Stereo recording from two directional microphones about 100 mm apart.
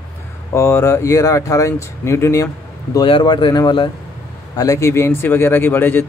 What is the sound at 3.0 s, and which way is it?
Speech, 55° left (ahead or behind).